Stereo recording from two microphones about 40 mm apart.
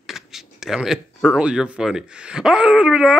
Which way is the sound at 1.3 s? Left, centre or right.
Right.